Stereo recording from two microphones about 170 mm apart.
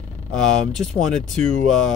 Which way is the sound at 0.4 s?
Centre (ahead or behind).